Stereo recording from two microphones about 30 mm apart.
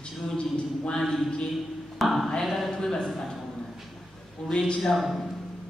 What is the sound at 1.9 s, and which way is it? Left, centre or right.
Speech, centre.